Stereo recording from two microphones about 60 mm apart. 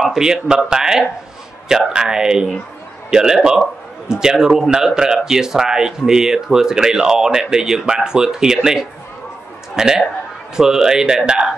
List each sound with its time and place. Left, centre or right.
0.0 s a man's voice: centre